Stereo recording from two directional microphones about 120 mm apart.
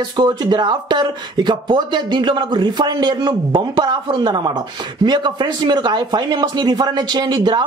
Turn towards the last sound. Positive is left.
turn(degrees=-35)  # may be behind; listen again after turning